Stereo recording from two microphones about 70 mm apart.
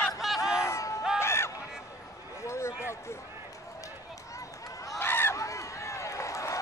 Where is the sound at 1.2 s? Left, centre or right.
Left.